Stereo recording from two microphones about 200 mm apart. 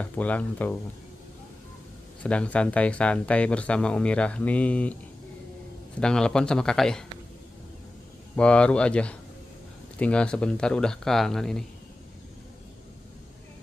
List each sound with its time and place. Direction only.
0.0 s speech: 5° left (ahead or behind)
2.2 s speech: 5° left (ahead or behind)
5.9 s speech: 5° left (ahead or behind)
8.4 s speech: 5° left (ahead or behind)